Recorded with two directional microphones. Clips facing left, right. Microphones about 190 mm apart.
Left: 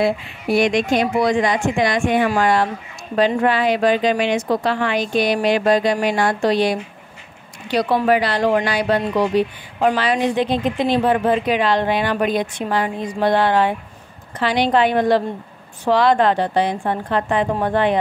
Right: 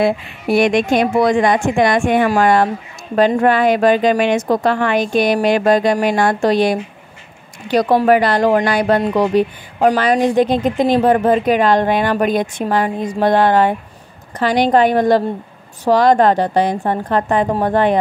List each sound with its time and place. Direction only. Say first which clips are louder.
0.0 s a woman's voice: right 3 dB; 55° right (ahead or behind)